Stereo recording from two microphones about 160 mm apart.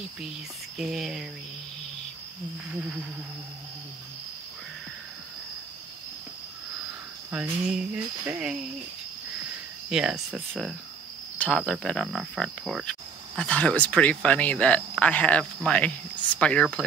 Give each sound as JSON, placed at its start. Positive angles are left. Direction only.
{"t": 0.7, "sound": "cricket", "side_deg": 0}
{"t": 2.7, "sound": "speech", "side_deg": -5}
{"t": 7.2, "sound": "speech", "side_deg": -10}
{"t": 9.8, "sound": "cricket", "side_deg": -5}
{"t": 13.4, "sound": "speech", "side_deg": 5}